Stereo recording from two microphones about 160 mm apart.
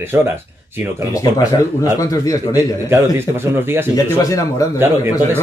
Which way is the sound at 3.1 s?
15° right (ahead or behind).